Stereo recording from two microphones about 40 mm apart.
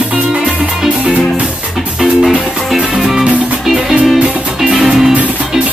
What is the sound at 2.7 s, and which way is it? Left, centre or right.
Music, right.